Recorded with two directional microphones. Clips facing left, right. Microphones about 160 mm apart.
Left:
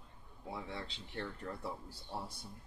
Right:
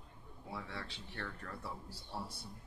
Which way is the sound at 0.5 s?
20° left (ahead or behind).